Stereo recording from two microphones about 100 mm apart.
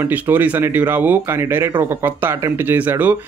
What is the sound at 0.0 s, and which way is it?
Speech, 20° right (ahead or behind).